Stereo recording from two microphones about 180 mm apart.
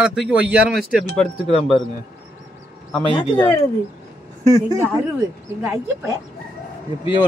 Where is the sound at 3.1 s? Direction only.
25° left (ahead or behind).